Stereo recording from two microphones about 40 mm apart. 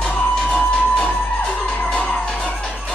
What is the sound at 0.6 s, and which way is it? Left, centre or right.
Music, left.